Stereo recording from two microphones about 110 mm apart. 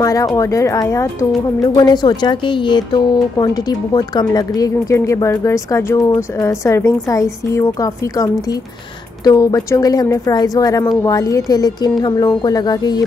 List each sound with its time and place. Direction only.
0.0 s speech: 30° left (ahead or behind)
1.8 s speech: 40° left (ahead or behind)